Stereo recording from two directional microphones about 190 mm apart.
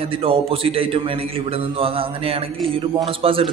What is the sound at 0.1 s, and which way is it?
A man's voice, 30° right (ahead or behind).